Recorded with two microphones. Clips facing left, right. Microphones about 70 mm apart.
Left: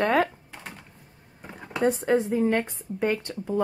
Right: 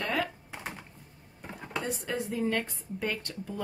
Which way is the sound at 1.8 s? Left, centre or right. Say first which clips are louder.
Left 14 dB; left.